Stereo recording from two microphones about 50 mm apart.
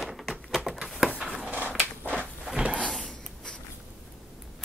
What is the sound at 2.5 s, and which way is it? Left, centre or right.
Drawer open or close, right.